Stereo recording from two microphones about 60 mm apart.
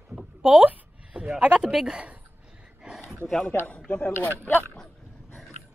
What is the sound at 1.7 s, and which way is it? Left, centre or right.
Speech, centre.